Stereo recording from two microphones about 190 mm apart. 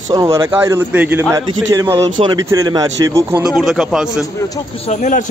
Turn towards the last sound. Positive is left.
turn(degrees=40)  # may be behind; listen again after turning